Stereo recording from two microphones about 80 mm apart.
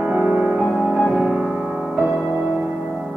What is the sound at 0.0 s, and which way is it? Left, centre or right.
Music, centre.